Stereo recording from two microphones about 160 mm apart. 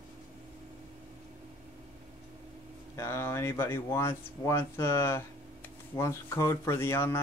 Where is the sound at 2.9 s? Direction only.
15° left (ahead or behind).